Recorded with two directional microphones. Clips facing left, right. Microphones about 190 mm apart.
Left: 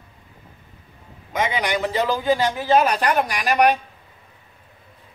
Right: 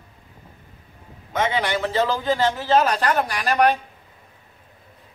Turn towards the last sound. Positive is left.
turn(degrees=15)  # may be behind; listen again after turning